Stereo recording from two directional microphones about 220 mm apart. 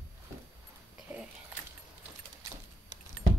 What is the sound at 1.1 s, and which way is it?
Keys jangling, 10° right (ahead or behind).